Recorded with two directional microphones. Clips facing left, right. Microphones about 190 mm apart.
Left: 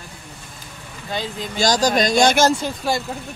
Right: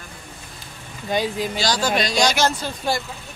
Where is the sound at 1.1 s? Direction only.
15° right (ahead or behind).